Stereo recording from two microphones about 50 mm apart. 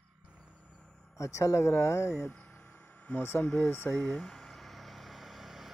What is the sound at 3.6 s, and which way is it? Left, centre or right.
Speech, left.